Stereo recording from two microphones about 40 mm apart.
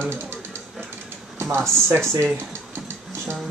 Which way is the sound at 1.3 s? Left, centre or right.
Right.